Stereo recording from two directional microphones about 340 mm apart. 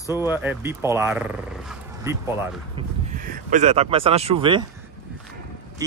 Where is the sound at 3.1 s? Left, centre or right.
Right.